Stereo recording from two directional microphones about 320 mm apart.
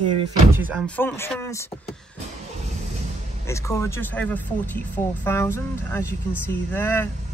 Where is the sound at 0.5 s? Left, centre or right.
Centre.